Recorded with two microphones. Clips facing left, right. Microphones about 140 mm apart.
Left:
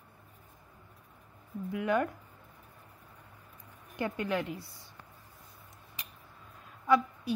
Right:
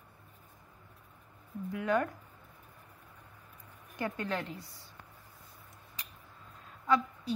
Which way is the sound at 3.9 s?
15° left (ahead or behind).